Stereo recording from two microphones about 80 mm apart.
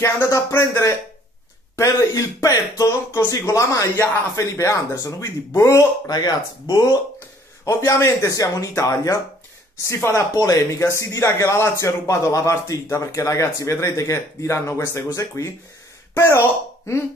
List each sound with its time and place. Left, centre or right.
0.0 s speech: left
6.0 s speech: left
7.6 s speech: left
10.3 s speech: left